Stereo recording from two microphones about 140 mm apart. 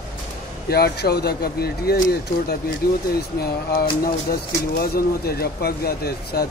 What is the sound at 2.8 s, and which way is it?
Speech, 90° left.